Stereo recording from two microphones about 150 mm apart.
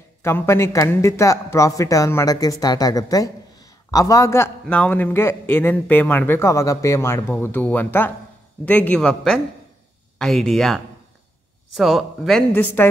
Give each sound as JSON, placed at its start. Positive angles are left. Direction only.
{"t": 0.2, "sound": "speech", "side_deg": 15}
{"t": 4.6, "sound": "a man's voice", "side_deg": 10}
{"t": 12.5, "sound": "a man's voice", "side_deg": 15}